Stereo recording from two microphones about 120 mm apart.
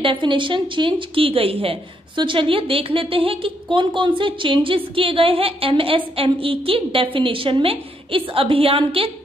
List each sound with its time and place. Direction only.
0.0 s a woman's voice: 45° right (ahead or behind)